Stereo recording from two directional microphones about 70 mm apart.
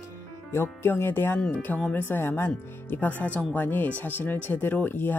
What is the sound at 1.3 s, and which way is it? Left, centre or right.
Speech, centre.